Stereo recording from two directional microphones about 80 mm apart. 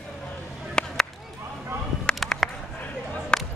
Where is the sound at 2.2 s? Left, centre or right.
Centre.